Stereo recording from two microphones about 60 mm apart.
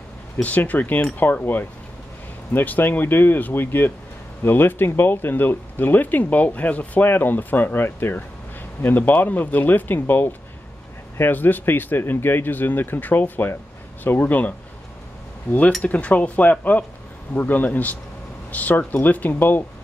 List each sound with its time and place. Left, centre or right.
0.4 s speech: left
15.8 s speech: left